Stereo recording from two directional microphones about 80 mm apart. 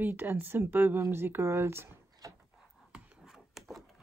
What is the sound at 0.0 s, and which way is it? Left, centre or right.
Speech, right.